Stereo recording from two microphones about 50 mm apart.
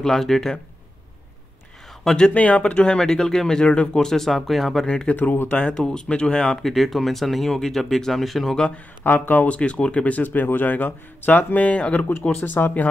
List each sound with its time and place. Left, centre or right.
0.0 s speech: centre
2.0 s speech: centre
4.8 s speech: centre
5.1 s speech: left
5.7 s speech: centre
6.6 s speech: centre
9.0 s speech: left
9.5 s speech: left